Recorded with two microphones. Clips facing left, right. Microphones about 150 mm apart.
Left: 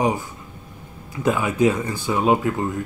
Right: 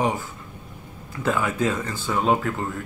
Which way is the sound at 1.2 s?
15° left (ahead or behind).